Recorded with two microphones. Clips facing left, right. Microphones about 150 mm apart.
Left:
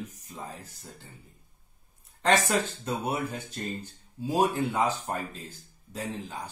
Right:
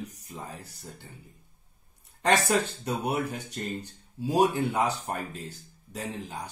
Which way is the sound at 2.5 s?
15° right (ahead or behind).